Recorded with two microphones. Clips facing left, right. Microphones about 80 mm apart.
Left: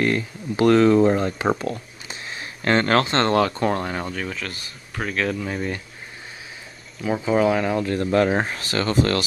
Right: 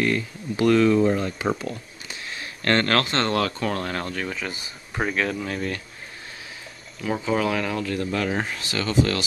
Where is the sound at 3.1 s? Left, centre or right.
Left.